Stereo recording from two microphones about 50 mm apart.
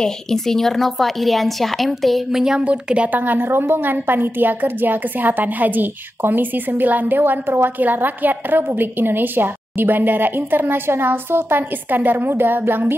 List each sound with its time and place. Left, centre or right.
0.0 s a woman's voice: centre
2.6 s a woman's voice: right
3.2 s a woman's voice: right